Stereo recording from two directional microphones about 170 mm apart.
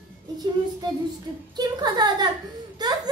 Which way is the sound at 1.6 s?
25° right (ahead or behind).